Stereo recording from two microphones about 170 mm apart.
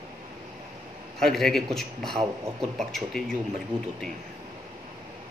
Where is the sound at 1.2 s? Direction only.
Centre (ahead or behind).